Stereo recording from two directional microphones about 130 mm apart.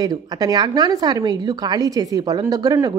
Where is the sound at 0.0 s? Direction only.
30° right (ahead or behind).